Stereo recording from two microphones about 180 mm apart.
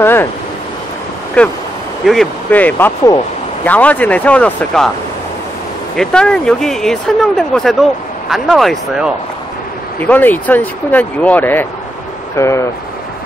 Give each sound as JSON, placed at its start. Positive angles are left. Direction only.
{"t": 0.0, "sound": "a sound", "side_deg": 10}
{"t": 1.4, "sound": "speech", "side_deg": 5}
{"t": 5.9, "sound": "speech", "side_deg": 5}
{"t": 9.9, "sound": "speech", "side_deg": 10}